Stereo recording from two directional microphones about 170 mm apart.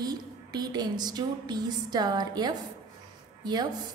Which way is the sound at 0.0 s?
25° right (ahead or behind).